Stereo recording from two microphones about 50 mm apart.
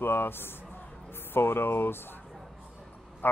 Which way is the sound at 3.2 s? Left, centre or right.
Left.